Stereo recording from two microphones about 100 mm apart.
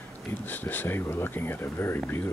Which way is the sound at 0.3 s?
20° left (ahead or behind).